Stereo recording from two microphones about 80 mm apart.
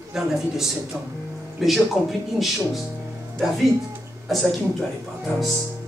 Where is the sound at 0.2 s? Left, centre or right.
Centre.